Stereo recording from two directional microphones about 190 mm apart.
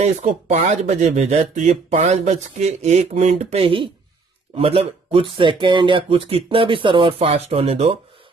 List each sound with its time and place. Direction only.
0.0 s speech: 35° right (ahead or behind)